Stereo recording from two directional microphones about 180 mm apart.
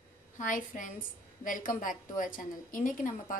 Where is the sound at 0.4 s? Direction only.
45° left (ahead or behind).